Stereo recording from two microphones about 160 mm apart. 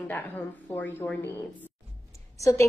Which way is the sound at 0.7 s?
10° left (ahead or behind).